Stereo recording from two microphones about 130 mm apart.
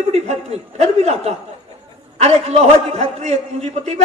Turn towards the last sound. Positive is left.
turn(degrees=-55)  # may be behind; listen again after turning